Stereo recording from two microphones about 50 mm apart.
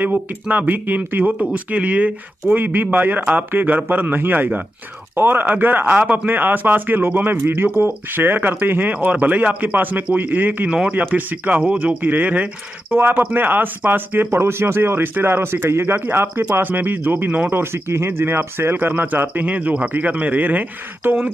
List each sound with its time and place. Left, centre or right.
0.0 s a man's voice: right
1.5 s speech: right
2.5 s a man's voice: right
5.1 s a man's voice: right
10.7 s speech: right
12.0 s a man's voice: right
14.4 s a man's voice: right
17.5 s a man's voice: right